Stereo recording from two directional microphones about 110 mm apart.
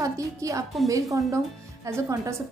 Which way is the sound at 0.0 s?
30° right (ahead or behind).